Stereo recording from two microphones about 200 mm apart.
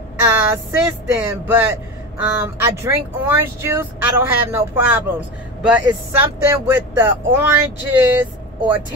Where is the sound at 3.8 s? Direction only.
10° right (ahead or behind).